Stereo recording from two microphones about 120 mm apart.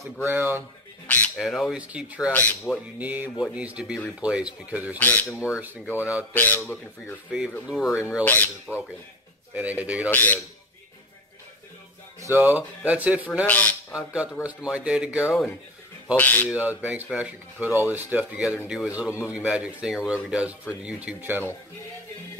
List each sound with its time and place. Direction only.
0.3 s a man's voice: 20° right (ahead or behind)
1.0 s squawk: 15° left (ahead or behind)
1.3 s a man's voice: centre (ahead or behind)
3.0 s a man's voice: 10° right (ahead or behind)
4.9 s speech: 15° left (ahead or behind)
5.9 s a man's voice: 10° right (ahead or behind)
6.3 s speech: 15° left (ahead or behind)
7.2 s a man's voice: 5° right (ahead or behind)
10.1 s speech: 15° left (ahead or behind)
12.3 s a man's voice: 15° right (ahead or behind)
13.5 s a man's voice: 15° left (ahead or behind)
13.9 s a man's voice: 10° right (ahead or behind)
16.2 s speech: 15° left (ahead or behind)
16.4 s a man's voice: 10° right (ahead or behind)